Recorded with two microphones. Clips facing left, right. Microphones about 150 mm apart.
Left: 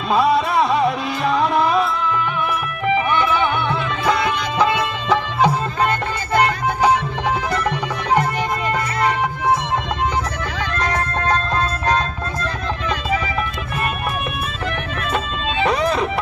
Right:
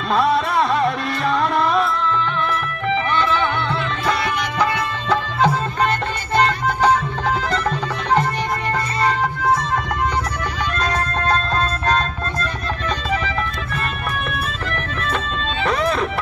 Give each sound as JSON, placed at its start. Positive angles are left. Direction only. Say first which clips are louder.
{"t": 0.1, "sound": "music", "louder": "left 2 dB", "side_deg": 0}
{"t": 2.9, "sound": "music", "louder": "left 2 dB", "side_deg": 15}
{"t": 7.5, "sound": "music", "louder": "even", "side_deg": 10}
{"t": 15.6, "sound": "music", "louder": "left 2 dB", "side_deg": 0}